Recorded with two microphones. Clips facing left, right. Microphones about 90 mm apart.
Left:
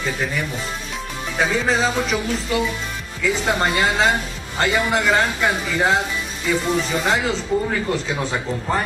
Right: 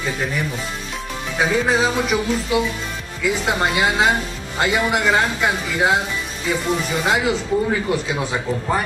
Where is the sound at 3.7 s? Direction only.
10° right (ahead or behind).